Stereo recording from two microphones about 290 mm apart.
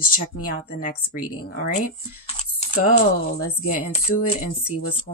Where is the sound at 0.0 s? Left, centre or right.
Left.